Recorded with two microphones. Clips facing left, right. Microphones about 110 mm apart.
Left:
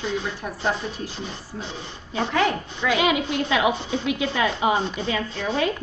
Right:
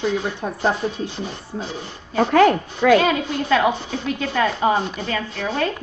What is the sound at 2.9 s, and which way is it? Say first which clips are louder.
A woman's voice: right 3 dB; 10° left (ahead or behind).